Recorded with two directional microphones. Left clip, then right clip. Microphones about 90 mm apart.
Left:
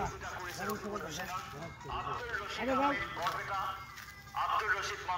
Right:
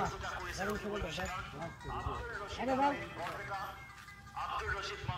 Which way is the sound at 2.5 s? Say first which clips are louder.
Even; 45° left (ahead or behind).